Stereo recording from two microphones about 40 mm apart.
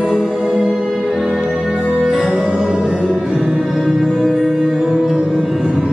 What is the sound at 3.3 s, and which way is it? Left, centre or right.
Music, centre.